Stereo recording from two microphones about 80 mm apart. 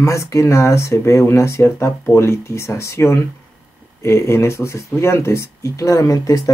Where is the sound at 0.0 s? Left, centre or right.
Left.